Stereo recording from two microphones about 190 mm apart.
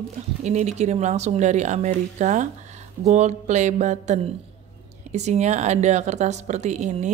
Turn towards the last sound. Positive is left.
turn(degrees=-40)  # may be behind; listen again after turning